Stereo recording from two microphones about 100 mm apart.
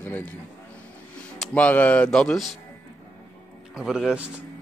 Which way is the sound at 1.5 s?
15° left (ahead or behind).